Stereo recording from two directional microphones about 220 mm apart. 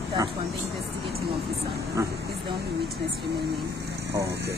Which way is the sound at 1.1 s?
45° right (ahead or behind).